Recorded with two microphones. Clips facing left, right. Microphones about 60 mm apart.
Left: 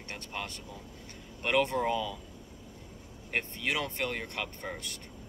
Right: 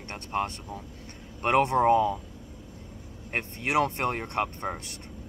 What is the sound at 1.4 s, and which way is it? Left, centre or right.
Speech, right.